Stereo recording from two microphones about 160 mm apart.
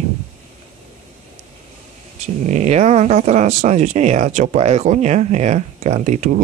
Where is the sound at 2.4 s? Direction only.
45° right (ahead or behind).